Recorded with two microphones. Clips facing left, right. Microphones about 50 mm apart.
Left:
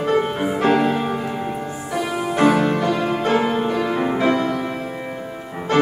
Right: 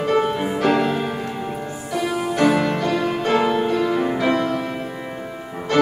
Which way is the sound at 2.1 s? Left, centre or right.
Left.